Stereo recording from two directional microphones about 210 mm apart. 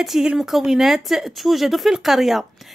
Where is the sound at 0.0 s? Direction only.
Centre (ahead or behind).